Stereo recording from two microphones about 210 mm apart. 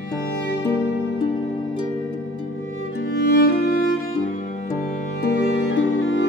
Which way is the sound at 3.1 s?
50° left (ahead or behind).